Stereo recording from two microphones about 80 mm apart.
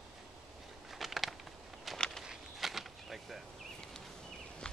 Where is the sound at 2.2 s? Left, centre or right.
Centre.